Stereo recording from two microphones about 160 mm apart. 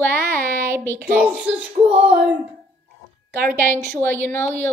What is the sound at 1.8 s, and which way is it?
Child singing, 35° right (ahead or behind).